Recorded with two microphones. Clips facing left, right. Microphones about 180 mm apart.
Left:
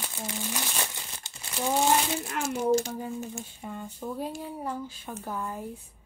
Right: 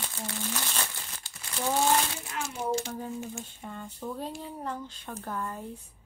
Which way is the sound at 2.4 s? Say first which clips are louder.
Left 6 dB; 40° left (ahead or behind).